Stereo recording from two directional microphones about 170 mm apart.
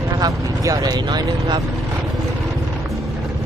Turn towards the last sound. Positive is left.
turn(degrees=-25)  # may be behind; listen again after turning